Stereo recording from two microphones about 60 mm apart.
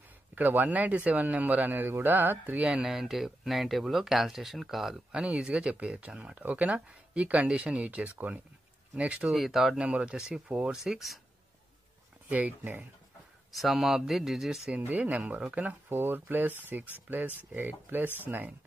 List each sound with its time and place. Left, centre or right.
0.3 s a man's voice: right
2.6 s a man's voice: centre
9.3 s speech: centre
9.8 s speech: centre
10.8 s speech: centre
12.3 s a man's voice: right
13.5 s speech: centre
14.9 s a man's voice: right
15.9 s a man's voice: right